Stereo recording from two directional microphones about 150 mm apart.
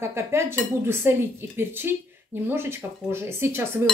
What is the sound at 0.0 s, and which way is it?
Speech, 15° right (ahead or behind).